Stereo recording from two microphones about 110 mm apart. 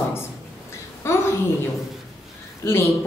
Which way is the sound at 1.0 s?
25° left (ahead or behind).